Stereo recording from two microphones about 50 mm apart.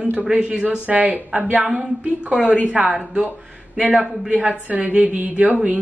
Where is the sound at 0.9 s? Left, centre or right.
Right.